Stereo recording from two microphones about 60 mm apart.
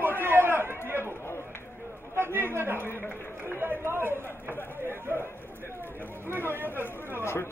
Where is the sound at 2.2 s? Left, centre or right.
Right.